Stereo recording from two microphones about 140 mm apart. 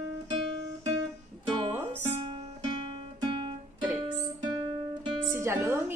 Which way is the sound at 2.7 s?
35° right (ahead or behind).